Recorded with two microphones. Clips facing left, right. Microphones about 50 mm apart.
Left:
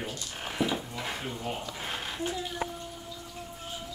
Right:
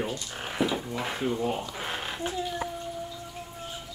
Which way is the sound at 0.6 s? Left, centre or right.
Centre.